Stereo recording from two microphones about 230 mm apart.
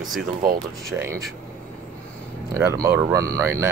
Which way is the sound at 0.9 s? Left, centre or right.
Centre.